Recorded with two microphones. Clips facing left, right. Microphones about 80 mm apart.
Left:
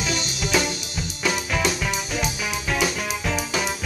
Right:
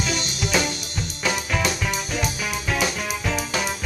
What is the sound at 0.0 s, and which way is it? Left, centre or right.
Music, centre.